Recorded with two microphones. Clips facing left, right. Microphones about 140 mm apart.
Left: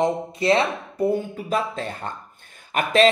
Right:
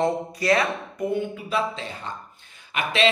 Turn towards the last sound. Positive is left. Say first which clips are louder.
# left 6 dB
turn(degrees=45)  # may be behind; listen again after turning